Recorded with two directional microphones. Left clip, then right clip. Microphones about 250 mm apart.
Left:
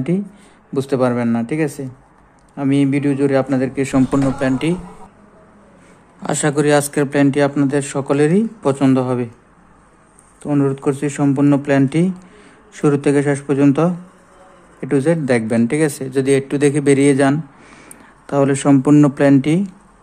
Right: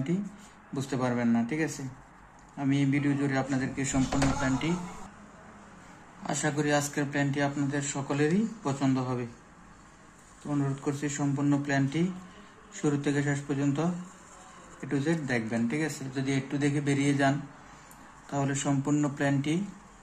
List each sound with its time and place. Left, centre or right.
0.7 s speech: left
6.2 s speech: left
10.4 s speech: left